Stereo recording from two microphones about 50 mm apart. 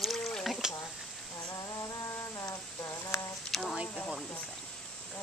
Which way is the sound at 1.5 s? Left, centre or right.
Left.